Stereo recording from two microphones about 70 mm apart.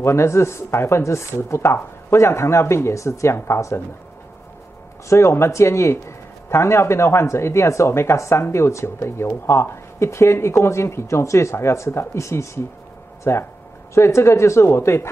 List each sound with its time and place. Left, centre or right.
0.0 s a man's voice: left
5.1 s a man's voice: left